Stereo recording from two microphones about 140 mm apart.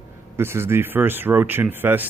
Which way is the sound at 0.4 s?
15° right (ahead or behind).